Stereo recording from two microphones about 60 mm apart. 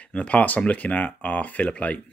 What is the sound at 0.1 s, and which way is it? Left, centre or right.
Speech, centre.